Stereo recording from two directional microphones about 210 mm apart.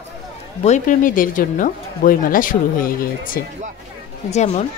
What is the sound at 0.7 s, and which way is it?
Speech, 35° left (ahead or behind).